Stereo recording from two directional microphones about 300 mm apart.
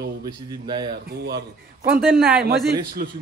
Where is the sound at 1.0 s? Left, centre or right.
Right.